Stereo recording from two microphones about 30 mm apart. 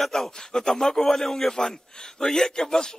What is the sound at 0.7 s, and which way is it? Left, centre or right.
Speech, centre.